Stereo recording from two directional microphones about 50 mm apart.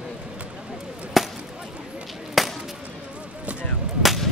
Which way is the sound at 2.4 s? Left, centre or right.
Centre.